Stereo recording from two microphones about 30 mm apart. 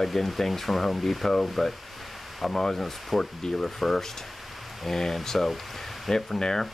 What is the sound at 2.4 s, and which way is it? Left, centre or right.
Speech, centre.